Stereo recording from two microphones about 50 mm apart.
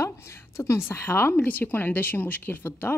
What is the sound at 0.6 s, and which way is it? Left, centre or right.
Speech, left.